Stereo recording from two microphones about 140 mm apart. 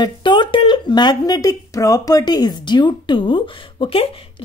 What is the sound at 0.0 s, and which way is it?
Speech, 35° left (ahead or behind).